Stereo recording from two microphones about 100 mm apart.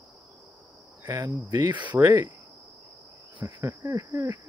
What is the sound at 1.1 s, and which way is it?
Speech, 30° right (ahead or behind).